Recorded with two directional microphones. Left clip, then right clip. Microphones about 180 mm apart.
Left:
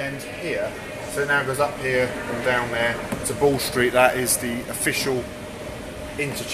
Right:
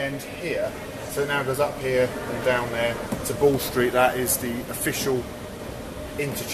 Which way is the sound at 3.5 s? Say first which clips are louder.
Left 2 dB; 20° left (ahead or behind).